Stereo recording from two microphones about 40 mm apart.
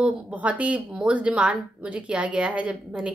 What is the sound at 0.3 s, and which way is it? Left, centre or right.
Speech, right.